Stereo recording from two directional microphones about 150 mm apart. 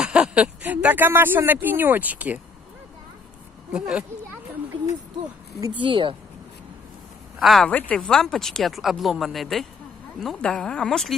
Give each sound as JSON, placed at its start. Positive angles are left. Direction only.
{"t": 0.0, "sound": "speech", "side_deg": -5}
{"t": 3.7, "sound": "speech", "side_deg": -5}
{"t": 5.8, "sound": "speech", "side_deg": -35}
{"t": 7.3, "sound": "speech", "side_deg": 0}